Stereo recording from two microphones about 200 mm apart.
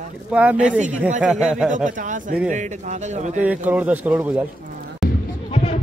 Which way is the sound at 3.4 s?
5° right (ahead or behind).